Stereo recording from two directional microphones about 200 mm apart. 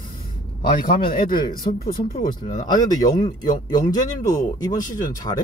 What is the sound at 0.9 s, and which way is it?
Speech, 25° left (ahead or behind).